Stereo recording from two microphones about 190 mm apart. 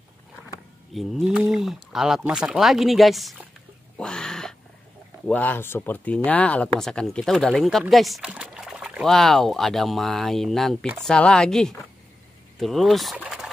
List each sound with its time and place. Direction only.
0.9 s speech: centre (ahead or behind)
4.0 s a sound: 5° left (ahead or behind)
5.2 s speech: 10° left (ahead or behind)